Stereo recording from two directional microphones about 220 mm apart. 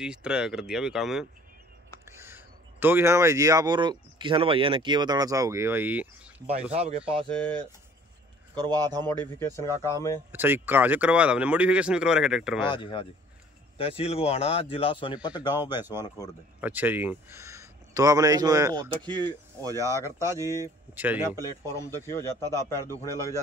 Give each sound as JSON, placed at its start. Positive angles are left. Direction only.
{"t": 0.0, "sound": "speech", "side_deg": -5}
{"t": 6.7, "sound": "speech", "side_deg": -30}
{"t": 7.2, "sound": "speech", "side_deg": 10}
{"t": 8.5, "sound": "speech", "side_deg": -20}
{"t": 9.0, "sound": "speech", "side_deg": 10}
{"t": 10.3, "sound": "speech", "side_deg": -10}
{"t": 12.6, "sound": "a man's voice", "side_deg": 20}
{"t": 15.8, "sound": "speech", "side_deg": -10}
{"t": 20.2, "sound": "speech", "side_deg": -15}
{"t": 21.6, "sound": "speech", "side_deg": 10}